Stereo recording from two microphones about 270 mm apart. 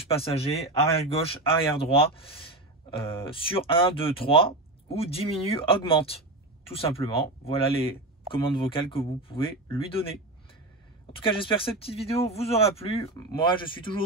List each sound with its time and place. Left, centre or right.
0.0 s speech: left
11.1 s speech: centre